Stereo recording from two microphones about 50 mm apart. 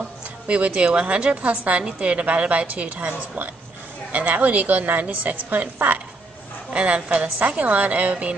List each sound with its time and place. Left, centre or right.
0.5 s a woman's voice: right
6.7 s a woman's voice: right